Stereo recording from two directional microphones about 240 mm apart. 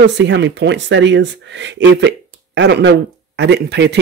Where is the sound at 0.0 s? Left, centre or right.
Right.